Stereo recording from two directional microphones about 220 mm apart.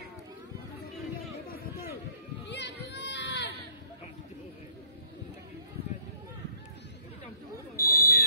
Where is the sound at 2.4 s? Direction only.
50° left (ahead or behind).